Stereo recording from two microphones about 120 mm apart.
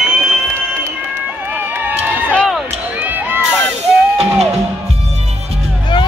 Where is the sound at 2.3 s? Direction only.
Centre (ahead or behind).